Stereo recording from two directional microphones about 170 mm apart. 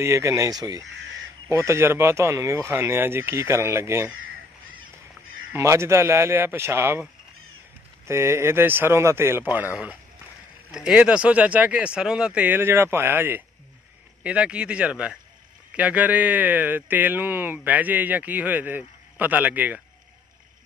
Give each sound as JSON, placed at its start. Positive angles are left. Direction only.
{"t": 0.0, "sound": "speech", "side_deg": -15}
{"t": 5.5, "sound": "speech", "side_deg": -15}
{"t": 8.1, "sound": "speech", "side_deg": -15}
{"t": 10.7, "sound": "speech", "side_deg": -5}